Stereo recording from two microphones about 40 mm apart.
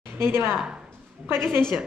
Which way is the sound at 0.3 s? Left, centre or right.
Right.